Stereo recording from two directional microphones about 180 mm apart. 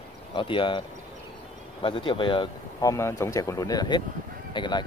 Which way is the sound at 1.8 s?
30° left (ahead or behind).